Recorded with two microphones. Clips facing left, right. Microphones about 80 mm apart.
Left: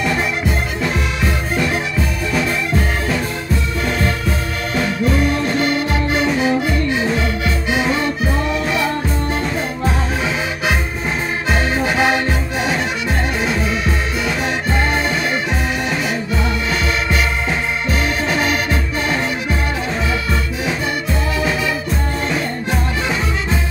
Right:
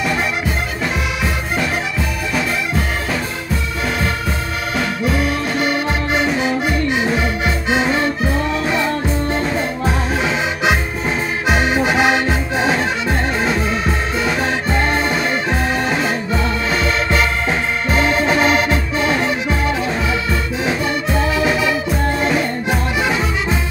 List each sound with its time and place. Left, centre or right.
5.6 s music: centre
10.2 s music: right
17.8 s music: right